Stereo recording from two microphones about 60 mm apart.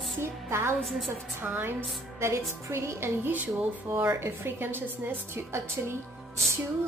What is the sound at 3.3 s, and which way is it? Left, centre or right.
Music, right.